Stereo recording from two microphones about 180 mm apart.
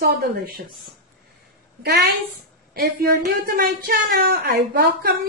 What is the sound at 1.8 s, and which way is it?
A woman's voice, 65° right (ahead or behind).